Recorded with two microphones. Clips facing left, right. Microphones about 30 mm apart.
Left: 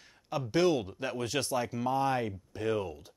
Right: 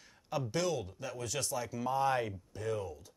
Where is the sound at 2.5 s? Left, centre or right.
Left.